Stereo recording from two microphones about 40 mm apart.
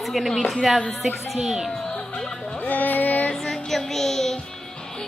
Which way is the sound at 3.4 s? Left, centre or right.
Centre.